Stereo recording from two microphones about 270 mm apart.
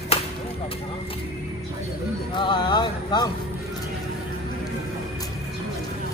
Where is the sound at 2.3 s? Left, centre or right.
Centre.